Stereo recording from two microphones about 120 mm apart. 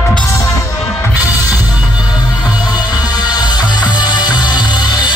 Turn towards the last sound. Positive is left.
turn(degrees=40)  # may be behind; listen again after turning